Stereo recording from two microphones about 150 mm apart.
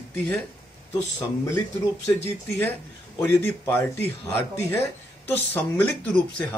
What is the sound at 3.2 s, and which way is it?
A man's voice, 15° left (ahead or behind).